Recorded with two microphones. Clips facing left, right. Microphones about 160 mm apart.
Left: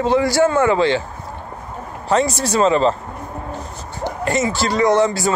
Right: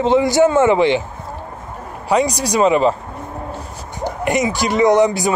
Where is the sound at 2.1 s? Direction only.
15° right (ahead or behind).